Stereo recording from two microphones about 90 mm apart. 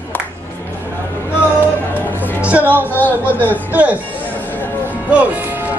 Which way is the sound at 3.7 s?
15° right (ahead or behind).